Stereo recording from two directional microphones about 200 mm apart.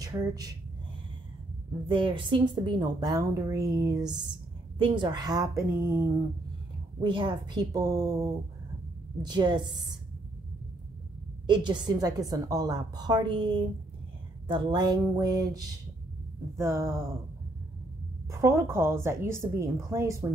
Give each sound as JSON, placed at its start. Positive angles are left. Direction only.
{"t": 0.0, "sound": "speech", "side_deg": -20}
{"t": 1.9, "sound": "a woman's voice", "side_deg": -25}
{"t": 7.0, "sound": "a woman's voice", "side_deg": -25}
{"t": 11.4, "sound": "a woman's voice", "side_deg": -20}
{"t": 18.3, "sound": "a woman's voice", "side_deg": -15}